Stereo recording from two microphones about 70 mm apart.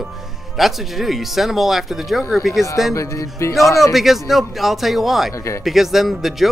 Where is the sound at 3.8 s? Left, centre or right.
Centre.